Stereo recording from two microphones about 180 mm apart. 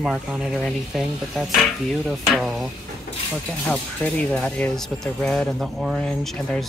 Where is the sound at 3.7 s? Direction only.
5° left (ahead or behind).